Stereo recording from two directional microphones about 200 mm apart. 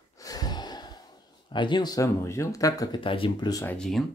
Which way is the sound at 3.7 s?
Centre (ahead or behind).